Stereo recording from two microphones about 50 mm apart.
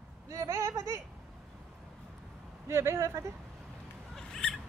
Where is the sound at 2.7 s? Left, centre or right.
Right.